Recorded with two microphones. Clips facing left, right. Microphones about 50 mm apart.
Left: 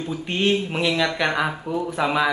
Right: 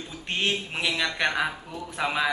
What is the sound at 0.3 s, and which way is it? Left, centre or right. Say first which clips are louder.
Speech: left 6 dB; centre.